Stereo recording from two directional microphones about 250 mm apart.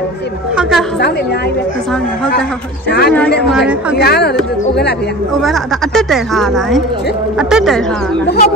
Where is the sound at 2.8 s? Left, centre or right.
Left.